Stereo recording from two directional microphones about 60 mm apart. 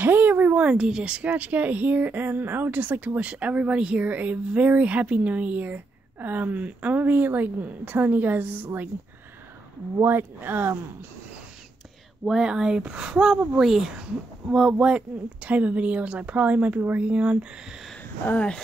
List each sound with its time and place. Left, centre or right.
0.0 s speech: right
10.0 s speech: right
12.3 s speech: centre